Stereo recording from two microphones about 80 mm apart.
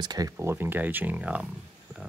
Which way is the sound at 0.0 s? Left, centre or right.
Right.